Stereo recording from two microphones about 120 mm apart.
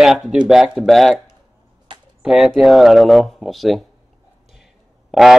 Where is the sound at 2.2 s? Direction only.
5° right (ahead or behind).